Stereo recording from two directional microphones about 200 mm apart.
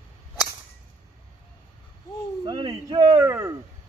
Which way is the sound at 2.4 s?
25° right (ahead or behind).